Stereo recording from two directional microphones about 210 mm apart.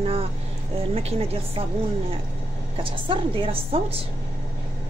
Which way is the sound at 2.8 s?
25° right (ahead or behind).